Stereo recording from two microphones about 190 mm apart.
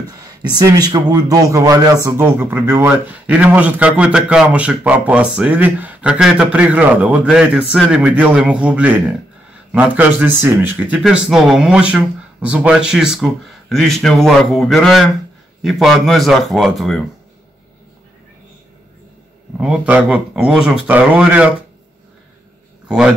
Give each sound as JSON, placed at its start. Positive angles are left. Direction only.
{"t": 0.6, "sound": "speech", "side_deg": -20}
{"t": 19.6, "sound": "speech", "side_deg": -5}
{"t": 22.8, "sound": "a man's voice", "side_deg": -5}